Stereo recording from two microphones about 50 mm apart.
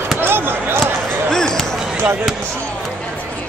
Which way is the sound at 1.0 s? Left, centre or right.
Centre.